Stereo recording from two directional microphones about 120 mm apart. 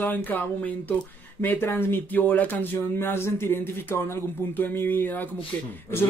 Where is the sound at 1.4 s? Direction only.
15° left (ahead or behind).